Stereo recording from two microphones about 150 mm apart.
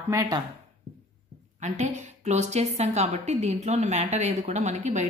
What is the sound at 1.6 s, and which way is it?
A woman's voice, 55° right (ahead or behind).